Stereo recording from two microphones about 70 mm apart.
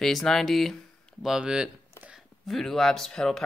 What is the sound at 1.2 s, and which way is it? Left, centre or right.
Speech, centre.